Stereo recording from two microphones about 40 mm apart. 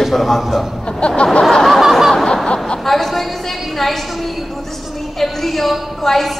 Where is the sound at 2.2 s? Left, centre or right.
Centre.